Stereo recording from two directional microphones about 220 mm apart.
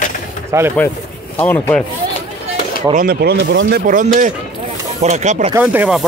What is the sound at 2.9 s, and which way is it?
Speech, 45° right (ahead or behind).